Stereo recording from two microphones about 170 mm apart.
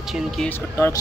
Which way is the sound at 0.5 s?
15° left (ahead or behind).